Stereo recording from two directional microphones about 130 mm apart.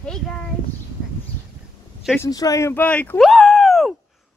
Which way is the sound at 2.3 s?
25° left (ahead or behind).